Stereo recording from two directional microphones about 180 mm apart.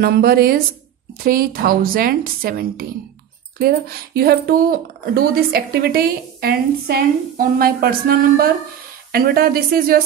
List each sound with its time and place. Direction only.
0.0 s speech: 55° right (ahead or behind)